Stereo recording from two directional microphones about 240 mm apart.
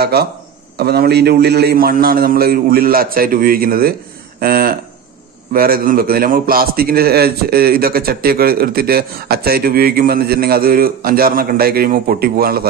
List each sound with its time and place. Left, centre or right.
0.0 s a man's voice: right